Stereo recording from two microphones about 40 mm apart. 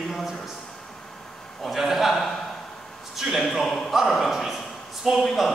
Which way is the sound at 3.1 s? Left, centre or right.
Centre.